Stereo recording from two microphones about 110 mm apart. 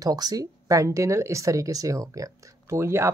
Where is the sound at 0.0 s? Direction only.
35° right (ahead or behind).